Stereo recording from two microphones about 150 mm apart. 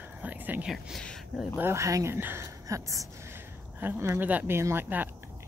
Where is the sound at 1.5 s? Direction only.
15° right (ahead or behind).